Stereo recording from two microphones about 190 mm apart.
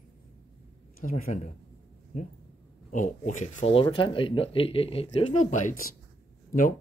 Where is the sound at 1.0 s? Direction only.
45° left (ahead or behind).